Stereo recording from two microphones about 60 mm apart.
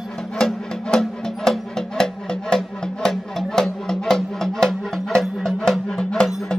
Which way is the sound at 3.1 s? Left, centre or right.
Centre.